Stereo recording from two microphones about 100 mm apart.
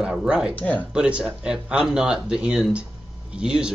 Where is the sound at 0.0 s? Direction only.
10° right (ahead or behind).